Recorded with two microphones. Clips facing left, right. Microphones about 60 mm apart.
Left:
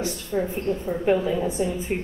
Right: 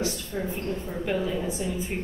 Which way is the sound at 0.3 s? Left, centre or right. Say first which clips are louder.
Left 9 dB; centre.